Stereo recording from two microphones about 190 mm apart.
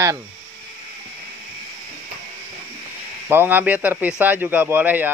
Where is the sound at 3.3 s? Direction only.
10° right (ahead or behind).